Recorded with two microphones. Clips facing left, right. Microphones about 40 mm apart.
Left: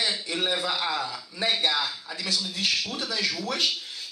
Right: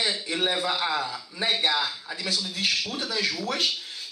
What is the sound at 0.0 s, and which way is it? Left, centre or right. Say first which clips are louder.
A man's voice: right 1 dB; centre.